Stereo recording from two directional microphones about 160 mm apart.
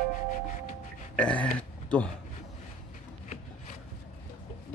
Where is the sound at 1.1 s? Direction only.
5° left (ahead or behind).